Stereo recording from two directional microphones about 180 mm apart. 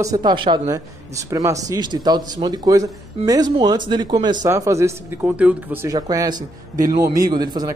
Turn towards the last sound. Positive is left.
turn(degrees=-25)  # may be behind; listen again after turning